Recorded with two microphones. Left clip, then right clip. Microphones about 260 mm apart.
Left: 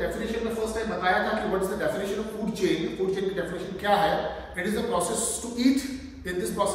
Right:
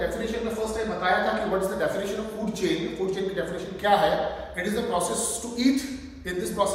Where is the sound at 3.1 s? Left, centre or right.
Centre.